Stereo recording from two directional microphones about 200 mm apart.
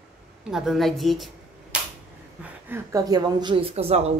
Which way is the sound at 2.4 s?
10° right (ahead or behind).